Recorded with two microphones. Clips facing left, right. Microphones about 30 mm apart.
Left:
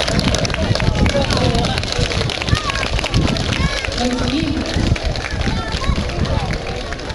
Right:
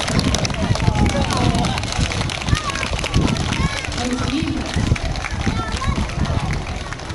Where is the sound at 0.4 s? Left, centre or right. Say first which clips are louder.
Left 3 dB; left.